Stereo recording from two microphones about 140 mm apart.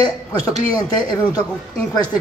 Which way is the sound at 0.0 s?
25° left (ahead or behind).